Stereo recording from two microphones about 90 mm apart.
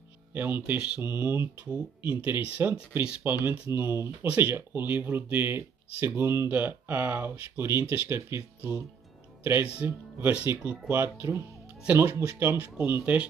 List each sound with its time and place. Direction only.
0.3 s speech: 20° right (ahead or behind)
1.0 s speech: 25° right (ahead or behind)
1.7 s speech: 15° right (ahead or behind)
10.9 s speech: 30° right (ahead or behind)
11.8 s speech: 20° right (ahead or behind)